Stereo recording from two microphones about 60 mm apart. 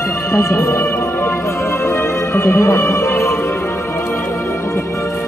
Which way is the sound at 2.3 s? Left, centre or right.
Left.